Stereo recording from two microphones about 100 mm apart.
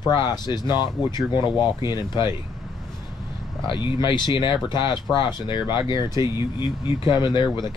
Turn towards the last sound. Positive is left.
turn(degrees=45)  # may be behind; listen again after turning